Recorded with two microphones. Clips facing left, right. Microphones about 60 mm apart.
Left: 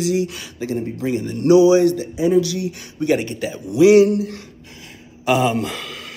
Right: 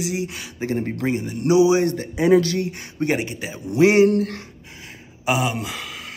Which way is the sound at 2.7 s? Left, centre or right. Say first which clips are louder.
Left 3 dB; right.